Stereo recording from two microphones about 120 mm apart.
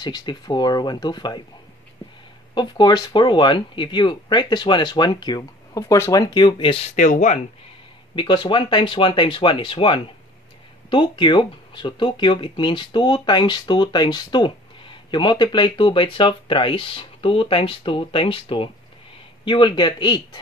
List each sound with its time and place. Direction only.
0.0 s speech: 35° left (ahead or behind)
2.5 s speech: 35° left (ahead or behind)
5.8 s speech: 25° left (ahead or behind)
6.3 s speech: 40° left (ahead or behind)
7.0 s speech: 90° left
8.2 s speech: 40° left (ahead or behind)